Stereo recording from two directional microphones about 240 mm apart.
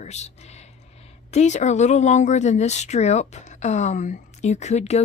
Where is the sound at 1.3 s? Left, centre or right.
Left.